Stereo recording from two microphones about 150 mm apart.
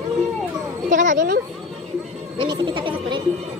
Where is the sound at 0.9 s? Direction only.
55° right (ahead or behind).